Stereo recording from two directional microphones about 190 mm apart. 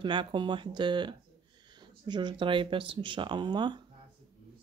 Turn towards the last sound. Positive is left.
turn(degrees=-25)  # may be behind; listen again after turning